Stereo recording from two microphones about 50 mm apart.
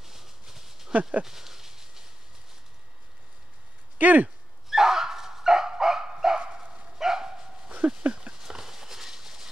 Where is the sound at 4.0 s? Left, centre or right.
Right.